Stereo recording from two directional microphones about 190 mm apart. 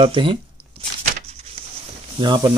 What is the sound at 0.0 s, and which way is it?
Speech, 25° right (ahead or behind).